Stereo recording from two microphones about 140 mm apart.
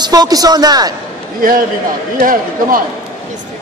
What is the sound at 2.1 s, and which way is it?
Speech, 80° right.